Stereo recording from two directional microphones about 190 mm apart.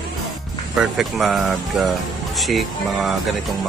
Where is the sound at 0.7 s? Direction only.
Centre (ahead or behind).